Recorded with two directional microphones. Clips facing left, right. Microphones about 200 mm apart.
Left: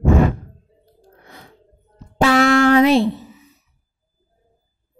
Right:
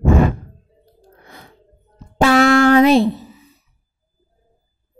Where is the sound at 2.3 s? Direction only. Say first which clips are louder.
Right 2 dB; 50° right (ahead or behind).